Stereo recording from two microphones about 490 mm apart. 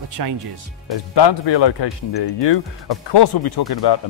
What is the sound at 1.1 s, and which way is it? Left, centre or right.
A man's voice, left.